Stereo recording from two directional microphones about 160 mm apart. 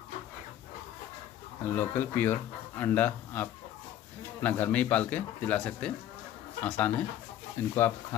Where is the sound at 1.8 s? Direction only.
15° left (ahead or behind).